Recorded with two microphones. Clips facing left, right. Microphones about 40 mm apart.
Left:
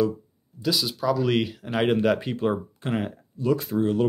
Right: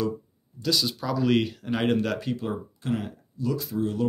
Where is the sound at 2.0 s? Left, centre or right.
Left.